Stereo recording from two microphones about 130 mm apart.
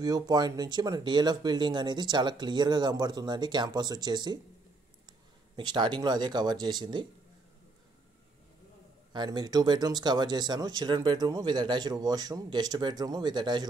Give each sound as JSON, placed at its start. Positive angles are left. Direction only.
{"t": 0.0, "sound": "speech", "side_deg": -30}
{"t": 5.6, "sound": "speech", "side_deg": -35}
{"t": 9.1, "sound": "speech", "side_deg": -35}